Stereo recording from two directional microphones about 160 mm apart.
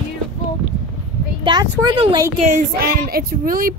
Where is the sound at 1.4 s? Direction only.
25° right (ahead or behind).